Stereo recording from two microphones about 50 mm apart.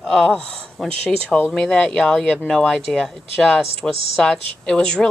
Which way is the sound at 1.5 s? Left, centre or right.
Centre.